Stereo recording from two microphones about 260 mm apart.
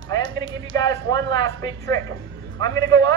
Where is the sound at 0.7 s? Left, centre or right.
Centre.